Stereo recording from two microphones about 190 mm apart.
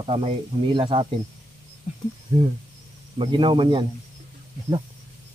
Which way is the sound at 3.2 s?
25° right (ahead or behind).